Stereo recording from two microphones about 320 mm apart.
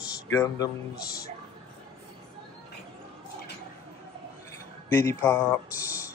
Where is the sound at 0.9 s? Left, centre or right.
Left.